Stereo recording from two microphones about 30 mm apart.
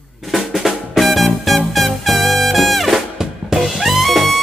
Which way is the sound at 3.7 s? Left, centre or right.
Centre.